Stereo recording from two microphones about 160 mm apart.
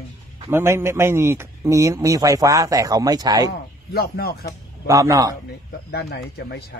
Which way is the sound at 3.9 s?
75° left (ahead or behind).